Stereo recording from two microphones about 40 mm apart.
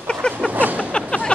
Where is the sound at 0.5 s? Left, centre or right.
Right.